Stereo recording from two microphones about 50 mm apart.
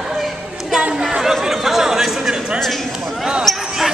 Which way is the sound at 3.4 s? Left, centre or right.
Centre.